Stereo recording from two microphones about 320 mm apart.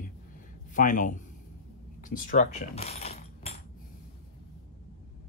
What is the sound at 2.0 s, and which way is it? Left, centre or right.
Coin, left.